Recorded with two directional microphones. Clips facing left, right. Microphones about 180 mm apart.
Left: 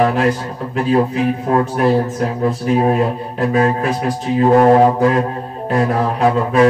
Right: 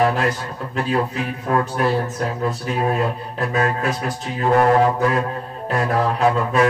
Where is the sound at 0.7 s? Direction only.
30° left (ahead or behind).